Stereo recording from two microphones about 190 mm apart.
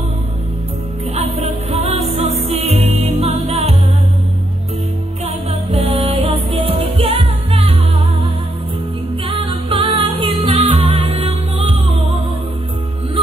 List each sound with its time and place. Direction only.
1.1 s music: 35° right (ahead or behind)
5.2 s music: 35° right (ahead or behind)
9.7 s music: 25° right (ahead or behind)